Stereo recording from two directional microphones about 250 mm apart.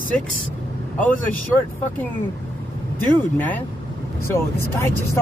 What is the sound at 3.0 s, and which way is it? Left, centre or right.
Speech, centre.